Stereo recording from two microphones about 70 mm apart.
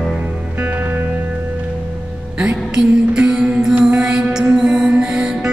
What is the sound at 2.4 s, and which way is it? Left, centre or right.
Music, centre.